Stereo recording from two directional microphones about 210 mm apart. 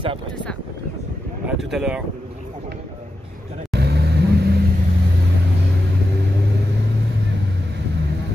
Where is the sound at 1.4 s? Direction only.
Centre (ahead or behind).